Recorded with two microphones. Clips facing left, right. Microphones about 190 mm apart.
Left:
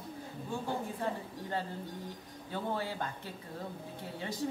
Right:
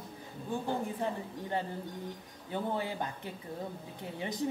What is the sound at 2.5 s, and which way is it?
A woman's voice, 15° right (ahead or behind).